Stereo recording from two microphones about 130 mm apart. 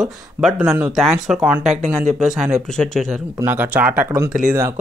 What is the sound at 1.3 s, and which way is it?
Speech, 5° right (ahead or behind).